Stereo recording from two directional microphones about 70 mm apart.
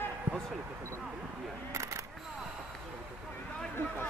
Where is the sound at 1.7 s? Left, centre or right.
Right.